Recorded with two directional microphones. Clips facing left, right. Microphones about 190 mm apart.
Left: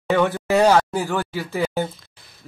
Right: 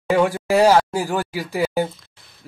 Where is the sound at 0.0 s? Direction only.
10° right (ahead or behind).